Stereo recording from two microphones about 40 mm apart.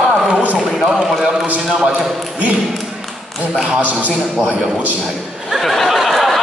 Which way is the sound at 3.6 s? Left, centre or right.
Right.